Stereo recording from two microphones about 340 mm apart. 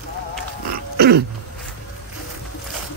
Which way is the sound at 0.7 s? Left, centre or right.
Right.